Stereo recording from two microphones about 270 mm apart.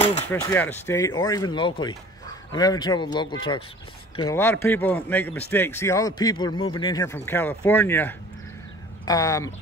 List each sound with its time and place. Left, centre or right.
0.3 s speech: centre